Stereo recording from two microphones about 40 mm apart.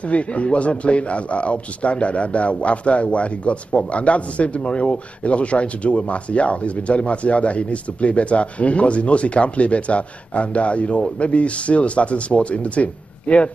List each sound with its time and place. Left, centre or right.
0.0 s a man's voice: left